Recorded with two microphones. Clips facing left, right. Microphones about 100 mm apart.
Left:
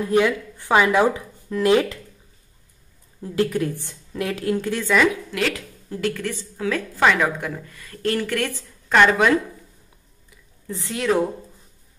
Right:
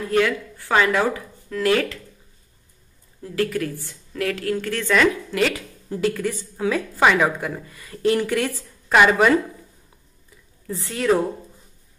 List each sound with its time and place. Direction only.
0.1 s speech: 15° left (ahead or behind)
3.2 s a woman's voice: 20° left (ahead or behind); by 9.4 s 5° right (ahead or behind)
10.8 s a woman's voice: centre (ahead or behind)